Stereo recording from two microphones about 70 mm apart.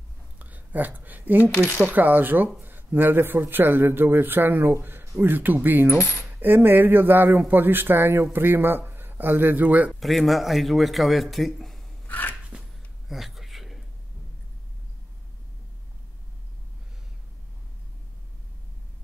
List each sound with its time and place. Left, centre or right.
0.4 s a woman's voice: right
9.9 s a man's voice: centre
12.1 s dog: left
13.1 s a sound: centre